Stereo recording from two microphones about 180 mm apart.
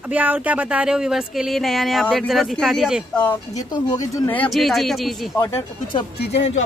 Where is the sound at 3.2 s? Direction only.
10° left (ahead or behind).